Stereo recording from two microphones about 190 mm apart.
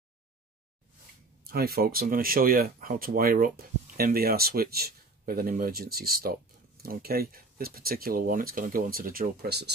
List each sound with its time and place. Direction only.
1.4 s speech: 50° right (ahead or behind)